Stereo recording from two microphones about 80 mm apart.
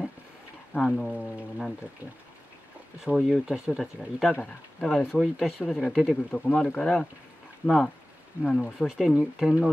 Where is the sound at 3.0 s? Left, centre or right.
Centre.